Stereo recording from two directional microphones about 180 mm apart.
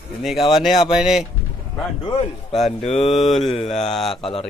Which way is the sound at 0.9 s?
5° right (ahead or behind).